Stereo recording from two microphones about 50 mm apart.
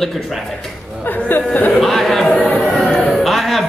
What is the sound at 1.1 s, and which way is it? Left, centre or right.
Speech, left.